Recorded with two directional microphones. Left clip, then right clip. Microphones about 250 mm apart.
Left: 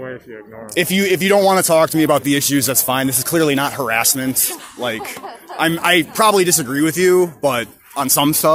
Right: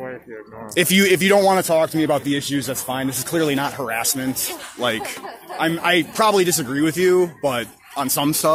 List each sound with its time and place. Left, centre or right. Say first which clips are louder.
0.7 s speech: even; centre
4.5 s speech: even; centre
5.2 s speech: left 7 dB; centre